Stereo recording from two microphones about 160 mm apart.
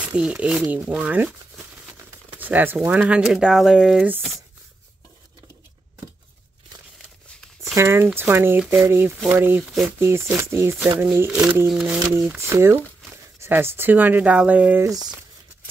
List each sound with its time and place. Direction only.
0.0 s speech: 5° right (ahead or behind)
7.6 s speech: 15° right (ahead or behind)
9.8 s speech: 15° right (ahead or behind)
12.4 s speech: 15° right (ahead or behind)